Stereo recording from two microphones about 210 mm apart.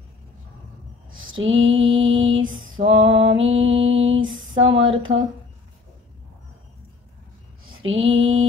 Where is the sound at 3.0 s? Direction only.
65° right (ahead or behind).